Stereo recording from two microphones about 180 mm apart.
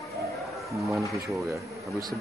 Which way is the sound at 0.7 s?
Centre (ahead or behind).